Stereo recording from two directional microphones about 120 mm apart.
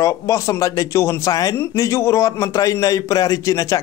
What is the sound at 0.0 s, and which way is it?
A man's voice, 25° left (ahead or behind).